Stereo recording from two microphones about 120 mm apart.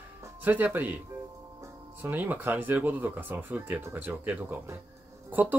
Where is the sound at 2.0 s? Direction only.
15° right (ahead or behind).